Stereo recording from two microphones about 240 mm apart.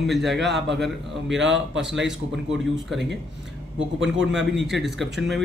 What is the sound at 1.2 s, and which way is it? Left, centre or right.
Speech, right.